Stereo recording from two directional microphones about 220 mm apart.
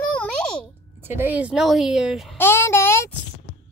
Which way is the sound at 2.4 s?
10° left (ahead or behind).